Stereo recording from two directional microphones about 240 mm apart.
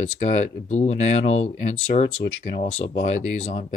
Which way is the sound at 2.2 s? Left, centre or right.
Left.